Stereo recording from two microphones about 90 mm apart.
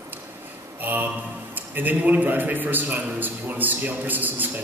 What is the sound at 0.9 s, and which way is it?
A man's voice, 20° right (ahead or behind).